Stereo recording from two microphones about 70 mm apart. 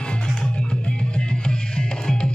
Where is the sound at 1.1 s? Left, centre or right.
Centre.